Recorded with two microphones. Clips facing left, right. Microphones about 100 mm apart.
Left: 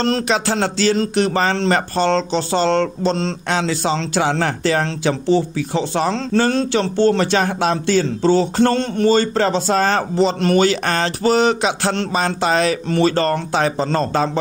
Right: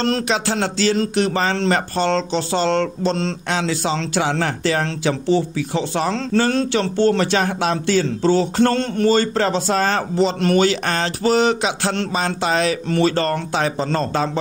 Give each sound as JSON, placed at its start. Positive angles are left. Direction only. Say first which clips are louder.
{"t": 0.3, "sound": "speech", "louder": "left 2 dB", "side_deg": 40}